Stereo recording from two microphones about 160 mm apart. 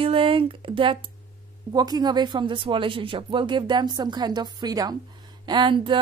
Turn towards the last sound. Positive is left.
turn(degrees=-30)  # may be behind; listen again after turning